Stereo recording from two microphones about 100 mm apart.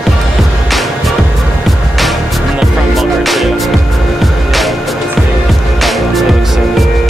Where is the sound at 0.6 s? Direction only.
Centre (ahead or behind).